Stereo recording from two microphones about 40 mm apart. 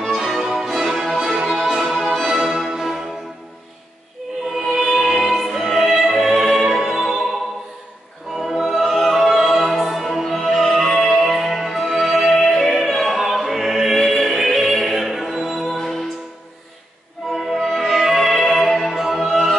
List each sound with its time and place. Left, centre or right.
0.1 s music: centre
2.0 s music: centre
2.2 s music: centre
4.6 s music: centre
8.4 s opera: centre
11.0 s music: centre
17.3 s music: centre